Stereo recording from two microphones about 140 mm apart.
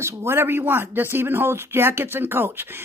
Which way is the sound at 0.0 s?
20° right (ahead or behind).